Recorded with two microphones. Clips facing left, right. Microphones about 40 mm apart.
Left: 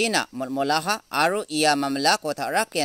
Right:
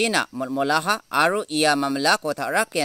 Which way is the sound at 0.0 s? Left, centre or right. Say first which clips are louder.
Right 2 dB; right.